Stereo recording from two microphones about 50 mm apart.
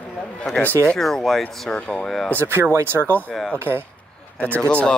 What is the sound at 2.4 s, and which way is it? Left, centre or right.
Speech, right.